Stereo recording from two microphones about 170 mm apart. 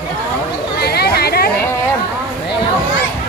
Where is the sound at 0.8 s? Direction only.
70° left (ahead or behind).